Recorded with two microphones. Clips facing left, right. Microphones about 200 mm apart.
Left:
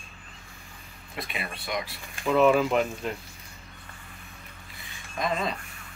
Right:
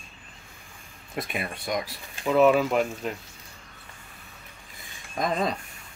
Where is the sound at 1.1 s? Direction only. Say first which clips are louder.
Right 4 dB; 45° right (ahead or behind).